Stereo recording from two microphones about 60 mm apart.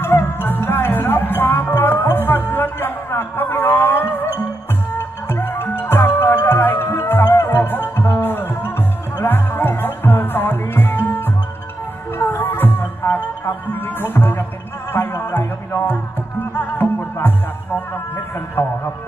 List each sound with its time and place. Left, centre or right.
0.0 s music: left
18.6 s music: left